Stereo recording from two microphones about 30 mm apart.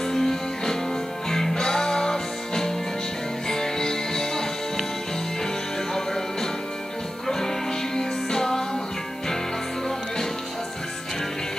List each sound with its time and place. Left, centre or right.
0.0 s music: centre
7.2 s music: centre